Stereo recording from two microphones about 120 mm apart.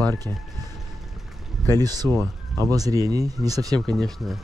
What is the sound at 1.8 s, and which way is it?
Speech, 30° right (ahead or behind).